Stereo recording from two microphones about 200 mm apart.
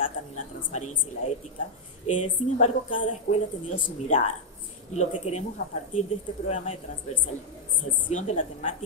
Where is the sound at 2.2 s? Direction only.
35° left (ahead or behind).